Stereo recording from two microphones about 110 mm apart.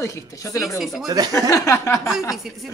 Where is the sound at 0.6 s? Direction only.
Centre (ahead or behind).